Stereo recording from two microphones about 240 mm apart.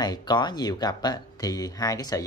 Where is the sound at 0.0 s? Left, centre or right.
Centre.